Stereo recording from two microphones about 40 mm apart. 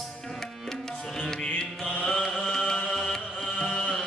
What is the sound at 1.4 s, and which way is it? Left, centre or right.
Music, centre.